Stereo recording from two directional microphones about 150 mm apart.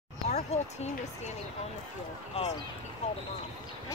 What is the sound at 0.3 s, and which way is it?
Speech, 50° left (ahead or behind).